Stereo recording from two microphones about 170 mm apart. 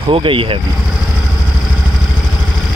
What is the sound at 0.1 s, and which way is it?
Speech, 30° right (ahead or behind).